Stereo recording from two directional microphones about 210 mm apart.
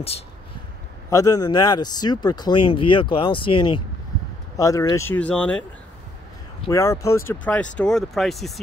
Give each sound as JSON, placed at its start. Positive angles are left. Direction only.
{"t": 1.1, "sound": "speech", "side_deg": 15}
{"t": 6.7, "sound": "speech", "side_deg": 15}